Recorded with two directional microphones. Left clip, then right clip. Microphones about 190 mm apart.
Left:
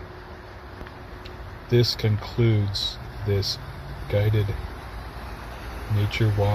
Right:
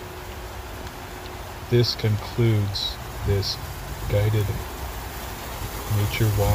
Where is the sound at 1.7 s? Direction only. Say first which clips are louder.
Even; centre (ahead or behind).